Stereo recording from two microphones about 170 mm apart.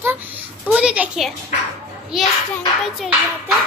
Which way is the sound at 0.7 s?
5° right (ahead or behind).